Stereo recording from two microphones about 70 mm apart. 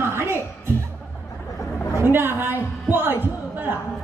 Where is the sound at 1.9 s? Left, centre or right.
Right.